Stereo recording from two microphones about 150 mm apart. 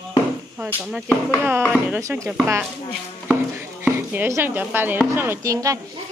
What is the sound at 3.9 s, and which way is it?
Speech, 15° right (ahead or behind).